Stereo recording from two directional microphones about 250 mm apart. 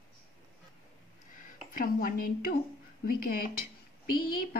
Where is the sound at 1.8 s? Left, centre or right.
Left.